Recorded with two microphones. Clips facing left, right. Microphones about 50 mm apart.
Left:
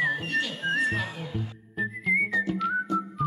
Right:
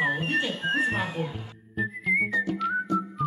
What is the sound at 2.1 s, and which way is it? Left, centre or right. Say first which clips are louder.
Whistling: even; centre.